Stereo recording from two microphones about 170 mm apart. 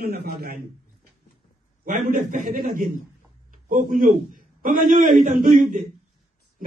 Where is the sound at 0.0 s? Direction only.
65° right (ahead or behind).